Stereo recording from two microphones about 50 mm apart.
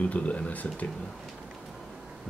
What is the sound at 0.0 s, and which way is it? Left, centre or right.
Speech, left.